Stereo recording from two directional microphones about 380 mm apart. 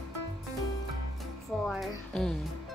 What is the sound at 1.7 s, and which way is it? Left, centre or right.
Speech, centre.